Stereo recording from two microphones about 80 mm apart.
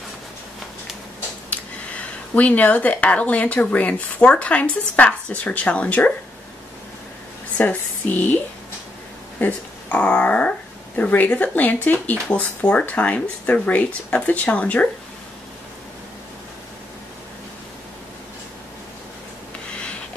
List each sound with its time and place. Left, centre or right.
2.3 s speech: centre
7.5 s speech: left
9.4 s speech: centre
19.8 s sniff: centre